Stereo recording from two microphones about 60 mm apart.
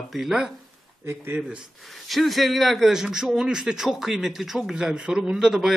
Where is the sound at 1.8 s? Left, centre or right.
Centre.